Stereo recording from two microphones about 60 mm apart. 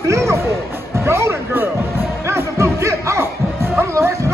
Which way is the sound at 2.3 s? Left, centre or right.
Right.